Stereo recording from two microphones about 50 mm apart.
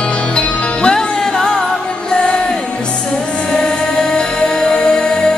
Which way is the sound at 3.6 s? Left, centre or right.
Centre.